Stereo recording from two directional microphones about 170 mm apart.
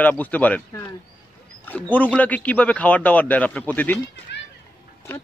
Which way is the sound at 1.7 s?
10° left (ahead or behind).